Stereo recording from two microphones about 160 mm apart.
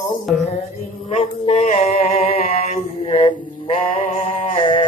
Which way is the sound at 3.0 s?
35° left (ahead or behind).